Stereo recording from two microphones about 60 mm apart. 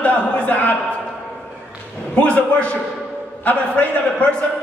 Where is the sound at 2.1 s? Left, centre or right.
Left.